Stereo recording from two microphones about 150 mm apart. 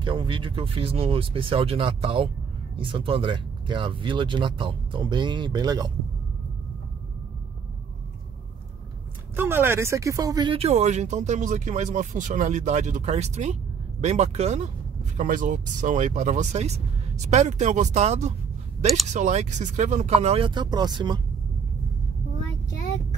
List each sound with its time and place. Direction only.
0.0 s speech: 35° right (ahead or behind)
9.3 s speech: 15° right (ahead or behind); by 14.7 s 45° right (ahead or behind)
15.1 s speech: 60° right (ahead or behind)
20.4 s speech: 30° right (ahead or behind)